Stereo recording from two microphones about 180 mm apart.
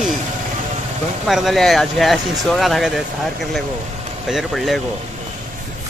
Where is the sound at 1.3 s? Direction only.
Centre (ahead or behind).